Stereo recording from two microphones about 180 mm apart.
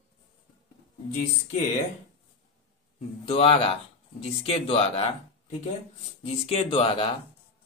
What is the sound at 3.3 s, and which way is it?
Speech, 30° left (ahead or behind).